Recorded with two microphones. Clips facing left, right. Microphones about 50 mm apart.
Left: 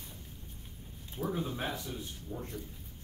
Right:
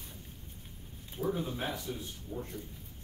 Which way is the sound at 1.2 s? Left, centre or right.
Left.